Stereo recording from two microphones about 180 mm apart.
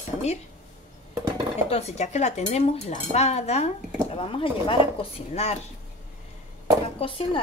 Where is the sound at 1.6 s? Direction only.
35° left (ahead or behind).